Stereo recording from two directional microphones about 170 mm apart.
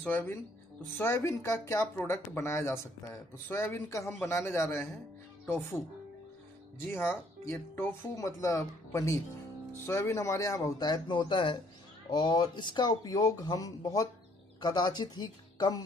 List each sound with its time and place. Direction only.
0.0 s speech: 10° left (ahead or behind)
6.8 s speech: 10° left (ahead or behind)